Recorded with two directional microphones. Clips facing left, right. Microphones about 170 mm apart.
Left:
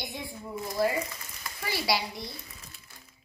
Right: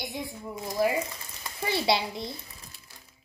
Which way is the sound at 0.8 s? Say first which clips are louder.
Right 2 dB; 15° right (ahead or behind).